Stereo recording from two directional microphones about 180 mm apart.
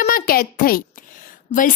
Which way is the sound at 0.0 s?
55° left (ahead or behind).